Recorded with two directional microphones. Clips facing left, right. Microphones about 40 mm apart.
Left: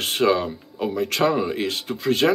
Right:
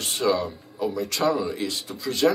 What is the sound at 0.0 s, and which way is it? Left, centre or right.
Speech, left.